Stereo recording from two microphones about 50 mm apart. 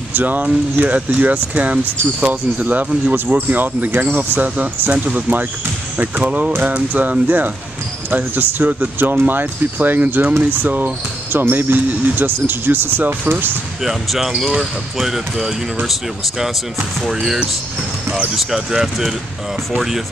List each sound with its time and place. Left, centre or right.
0.1 s speech: right
13.8 s speech: centre